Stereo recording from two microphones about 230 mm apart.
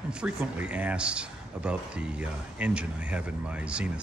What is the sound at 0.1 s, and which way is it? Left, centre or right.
A man's voice, centre.